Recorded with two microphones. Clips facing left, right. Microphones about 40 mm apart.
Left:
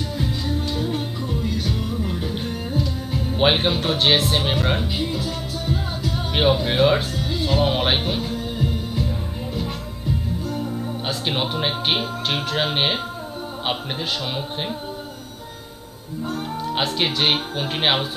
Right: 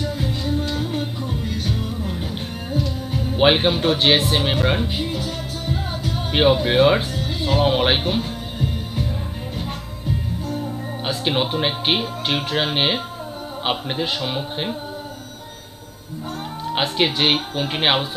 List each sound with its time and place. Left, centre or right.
0.0 s music: right
3.3 s speech: centre
3.7 s a man's voice: right
5.1 s music: right
6.1 s music: centre
6.5 s speech: right
7.2 s music: right
7.6 s speech: centre
11.1 s a man's voice: centre
16.7 s a man's voice: centre